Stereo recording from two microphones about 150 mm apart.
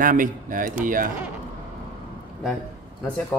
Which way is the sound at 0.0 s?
65° right (ahead or behind).